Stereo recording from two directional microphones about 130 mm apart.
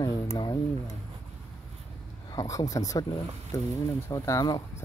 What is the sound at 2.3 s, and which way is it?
Speech, 25° left (ahead or behind).